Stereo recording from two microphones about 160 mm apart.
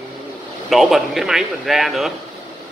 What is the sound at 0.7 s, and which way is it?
Speech, centre (ahead or behind).